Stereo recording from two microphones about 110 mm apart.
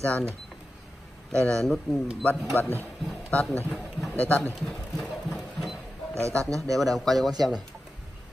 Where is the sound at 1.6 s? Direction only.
5° left (ahead or behind).